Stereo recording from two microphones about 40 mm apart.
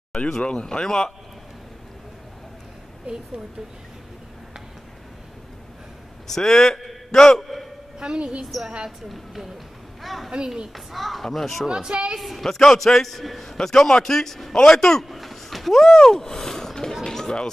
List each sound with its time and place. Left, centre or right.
0.4 s speech: left
0.7 s speech: centre
6.2 s speech: centre
8.0 s speech: centre
9.1 s a man's voice: centre
11.6 s speech: centre
12.2 s a man's voice: centre
12.4 s a man's voice: centre
15.1 s a sound: centre
16.0 s speech: centre
17.0 s a sound: centre